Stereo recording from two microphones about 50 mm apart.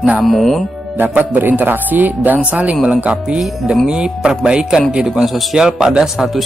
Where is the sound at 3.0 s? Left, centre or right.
Right; by 6.4 s centre.